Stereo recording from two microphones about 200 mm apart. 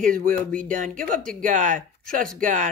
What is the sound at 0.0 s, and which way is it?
Speech, 45° right (ahead or behind).